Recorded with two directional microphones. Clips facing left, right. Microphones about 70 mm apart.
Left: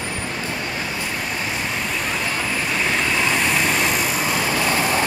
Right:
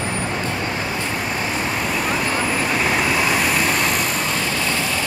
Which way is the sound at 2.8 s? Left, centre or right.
Centre.